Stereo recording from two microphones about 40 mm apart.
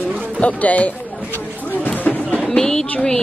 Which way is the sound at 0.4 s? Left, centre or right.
Left.